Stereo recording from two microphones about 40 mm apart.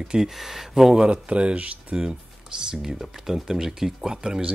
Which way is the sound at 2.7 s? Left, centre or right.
Centre.